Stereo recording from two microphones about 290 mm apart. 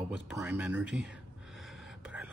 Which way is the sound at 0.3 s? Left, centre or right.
Centre.